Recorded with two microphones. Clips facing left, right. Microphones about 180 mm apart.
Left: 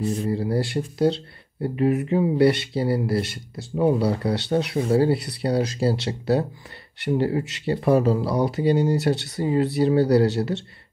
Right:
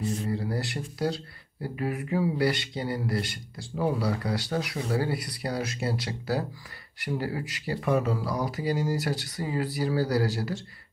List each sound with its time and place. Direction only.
0.0 s speech: 30° left (ahead or behind)